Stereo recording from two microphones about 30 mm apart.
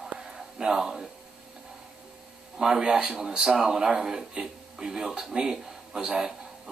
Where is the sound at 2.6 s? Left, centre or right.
Right.